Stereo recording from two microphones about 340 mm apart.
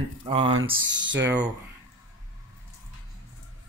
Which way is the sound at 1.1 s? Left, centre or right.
Right.